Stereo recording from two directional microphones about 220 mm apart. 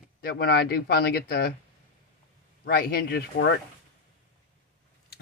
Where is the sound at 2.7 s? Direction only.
45° left (ahead or behind).